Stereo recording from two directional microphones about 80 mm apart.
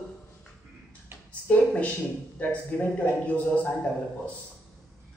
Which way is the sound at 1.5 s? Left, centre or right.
Centre.